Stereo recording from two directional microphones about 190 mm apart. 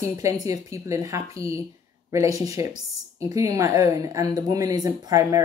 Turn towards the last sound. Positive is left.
turn(degrees=-20)  # may be behind; listen again after turning